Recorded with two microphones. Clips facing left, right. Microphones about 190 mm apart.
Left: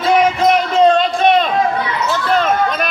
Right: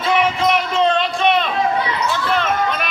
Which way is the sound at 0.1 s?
40° left (ahead or behind).